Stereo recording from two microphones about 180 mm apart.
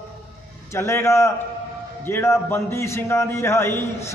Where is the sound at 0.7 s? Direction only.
15° left (ahead or behind).